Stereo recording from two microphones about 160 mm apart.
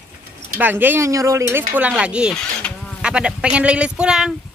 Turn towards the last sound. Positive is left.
turn(degrees=-5)  # may be behind; listen again after turning